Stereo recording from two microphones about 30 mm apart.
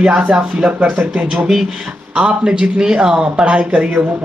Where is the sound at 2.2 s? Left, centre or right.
Right.